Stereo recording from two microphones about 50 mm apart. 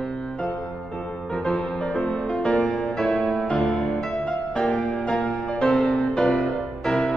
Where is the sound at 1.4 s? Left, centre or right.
Centre.